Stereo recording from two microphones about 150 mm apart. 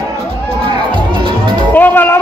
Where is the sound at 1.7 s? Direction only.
10° left (ahead or behind).